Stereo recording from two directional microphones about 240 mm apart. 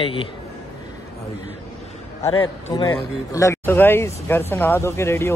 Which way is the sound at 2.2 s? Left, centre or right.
Centre.